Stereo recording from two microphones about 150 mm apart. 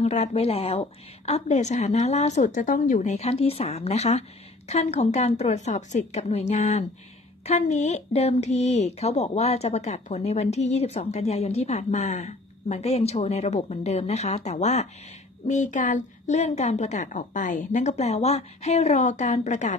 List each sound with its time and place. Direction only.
0.0 s speech: 45° left (ahead or behind)